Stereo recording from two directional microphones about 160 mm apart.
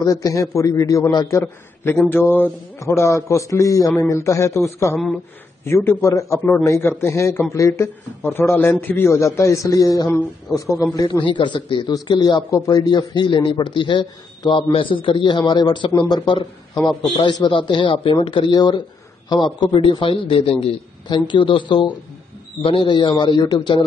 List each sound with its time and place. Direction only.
0.0 s a man's voice: 25° left (ahead or behind)